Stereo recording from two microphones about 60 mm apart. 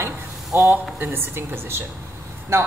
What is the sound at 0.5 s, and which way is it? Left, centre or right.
A woman's voice, right.